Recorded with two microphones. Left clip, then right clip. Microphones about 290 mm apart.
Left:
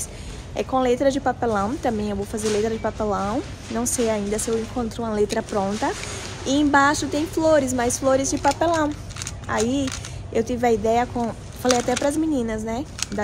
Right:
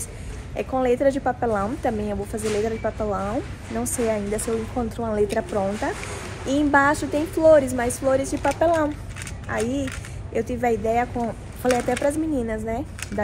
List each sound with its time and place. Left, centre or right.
0.6 s speech: centre
8.3 s speech: centre
8.5 s speech: centre